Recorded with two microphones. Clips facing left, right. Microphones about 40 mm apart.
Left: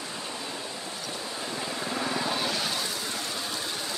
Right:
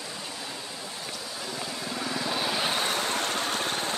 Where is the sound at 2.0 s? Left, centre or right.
Centre.